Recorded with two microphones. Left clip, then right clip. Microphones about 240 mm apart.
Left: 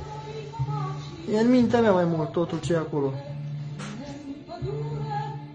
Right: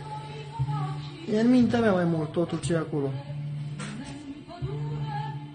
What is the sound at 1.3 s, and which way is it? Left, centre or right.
Speech, centre.